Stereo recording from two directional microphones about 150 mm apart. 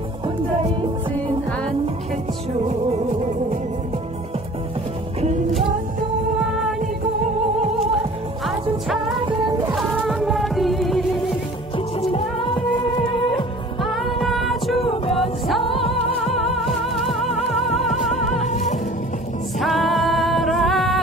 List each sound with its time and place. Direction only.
7.7 s music: centre (ahead or behind)
11.7 s music: 40° left (ahead or behind)
14.2 s music: centre (ahead or behind)
14.8 s music: 40° left (ahead or behind)
15.1 s music: centre (ahead or behind)
15.6 s music: 35° left (ahead or behind)
16.3 s music: centre (ahead or behind)
18.5 s music: 55° left (ahead or behind)
19.6 s music: centre (ahead or behind)